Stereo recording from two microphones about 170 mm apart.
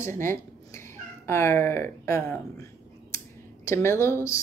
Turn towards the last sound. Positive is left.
turn(degrees=15)  # may be behind; listen again after turning